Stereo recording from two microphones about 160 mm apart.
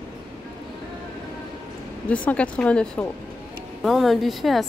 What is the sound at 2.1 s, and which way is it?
A woman's voice, 10° left (ahead or behind).